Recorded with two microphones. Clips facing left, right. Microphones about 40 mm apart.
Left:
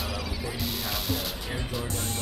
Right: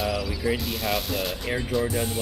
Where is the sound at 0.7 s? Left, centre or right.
Centre.